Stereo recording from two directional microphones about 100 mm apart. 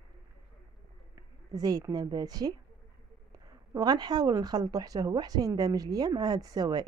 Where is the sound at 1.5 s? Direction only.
40° right (ahead or behind).